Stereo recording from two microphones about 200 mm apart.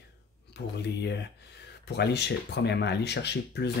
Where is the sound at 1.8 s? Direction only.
55° left (ahead or behind).